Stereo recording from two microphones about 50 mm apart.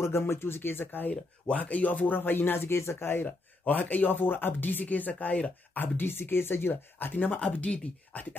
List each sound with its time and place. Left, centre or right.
0.0 s speech: left
1.1 s speech: left
3.3 s speech: left
5.8 s speech: left
7.3 s speech: left